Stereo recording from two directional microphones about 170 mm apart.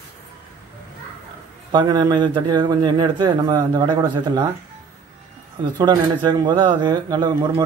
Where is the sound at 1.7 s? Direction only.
25° right (ahead or behind).